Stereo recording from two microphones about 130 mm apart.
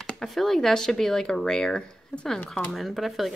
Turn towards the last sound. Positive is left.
turn(degrees=0)  # may be behind; listen again after turning